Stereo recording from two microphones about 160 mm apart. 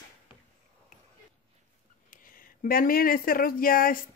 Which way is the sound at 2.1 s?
60° left (ahead or behind).